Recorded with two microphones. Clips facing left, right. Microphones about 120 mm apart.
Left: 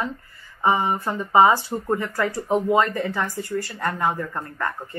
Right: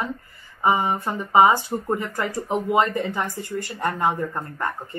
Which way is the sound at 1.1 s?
25° right (ahead or behind).